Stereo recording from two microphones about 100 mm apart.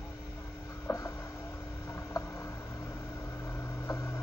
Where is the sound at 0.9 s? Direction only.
30° left (ahead or behind).